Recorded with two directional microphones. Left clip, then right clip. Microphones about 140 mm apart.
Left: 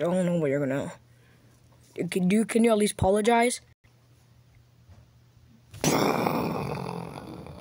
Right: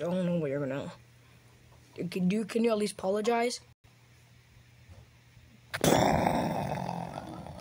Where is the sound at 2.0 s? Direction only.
25° left (ahead or behind).